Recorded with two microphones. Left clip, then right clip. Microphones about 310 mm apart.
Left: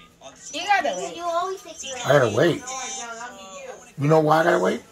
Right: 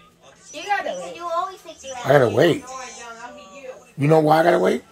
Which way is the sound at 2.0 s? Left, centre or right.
Right.